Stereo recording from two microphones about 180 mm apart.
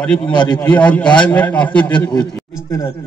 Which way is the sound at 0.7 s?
5° left (ahead or behind).